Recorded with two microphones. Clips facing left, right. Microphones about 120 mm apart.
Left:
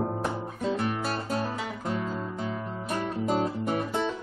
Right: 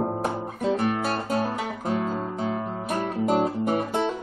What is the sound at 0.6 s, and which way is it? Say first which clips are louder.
Guitar: right 5 dB; 60° right (ahead or behind).